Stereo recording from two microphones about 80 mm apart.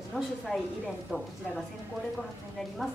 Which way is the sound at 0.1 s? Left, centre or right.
Centre.